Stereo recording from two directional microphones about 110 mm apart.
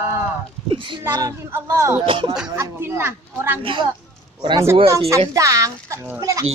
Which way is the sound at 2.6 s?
20° right (ahead or behind).